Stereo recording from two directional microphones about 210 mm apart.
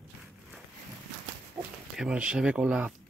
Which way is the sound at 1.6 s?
5° right (ahead or behind).